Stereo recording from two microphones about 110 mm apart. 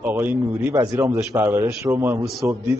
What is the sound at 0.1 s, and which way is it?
A man's voice, 15° right (ahead or behind).